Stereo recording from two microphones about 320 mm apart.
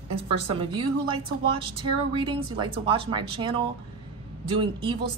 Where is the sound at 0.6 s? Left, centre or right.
Centre.